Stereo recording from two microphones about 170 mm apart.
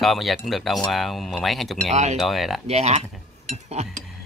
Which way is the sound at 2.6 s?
40° right (ahead or behind).